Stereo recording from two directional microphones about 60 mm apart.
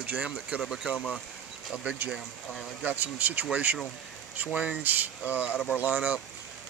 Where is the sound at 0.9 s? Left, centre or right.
Left.